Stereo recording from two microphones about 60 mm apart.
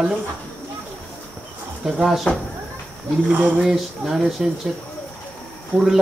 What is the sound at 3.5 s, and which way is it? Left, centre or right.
Speech, centre.